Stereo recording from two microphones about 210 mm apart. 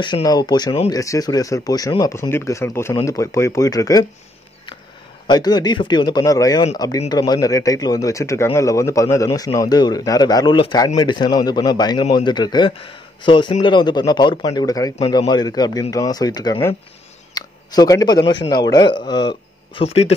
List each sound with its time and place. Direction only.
0.0 s speech: 20° left (ahead or behind)
5.2 s a man's voice: 20° left (ahead or behind)